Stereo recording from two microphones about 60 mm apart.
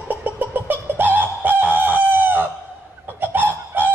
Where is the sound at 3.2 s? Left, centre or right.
Right.